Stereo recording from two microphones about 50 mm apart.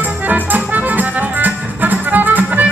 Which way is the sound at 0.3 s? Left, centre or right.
Right.